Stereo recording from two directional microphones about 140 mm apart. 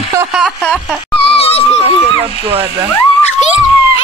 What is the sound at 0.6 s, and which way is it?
Speech, 5° left (ahead or behind).